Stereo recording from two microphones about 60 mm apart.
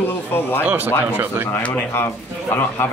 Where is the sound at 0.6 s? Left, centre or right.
Right.